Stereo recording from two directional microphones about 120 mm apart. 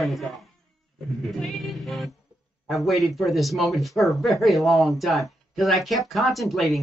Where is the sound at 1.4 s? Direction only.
Centre (ahead or behind).